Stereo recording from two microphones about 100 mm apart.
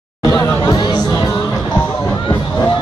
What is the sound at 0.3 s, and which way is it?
Music, 45° left (ahead or behind).